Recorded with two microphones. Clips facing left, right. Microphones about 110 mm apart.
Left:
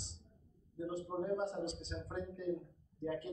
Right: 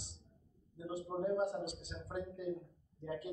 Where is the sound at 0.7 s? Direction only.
5° right (ahead or behind).